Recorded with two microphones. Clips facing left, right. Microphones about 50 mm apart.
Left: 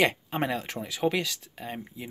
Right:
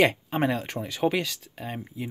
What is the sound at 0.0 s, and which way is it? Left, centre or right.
Speech, centre.